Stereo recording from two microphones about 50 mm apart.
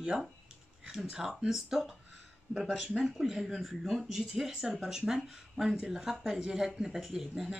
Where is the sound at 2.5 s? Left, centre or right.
Centre.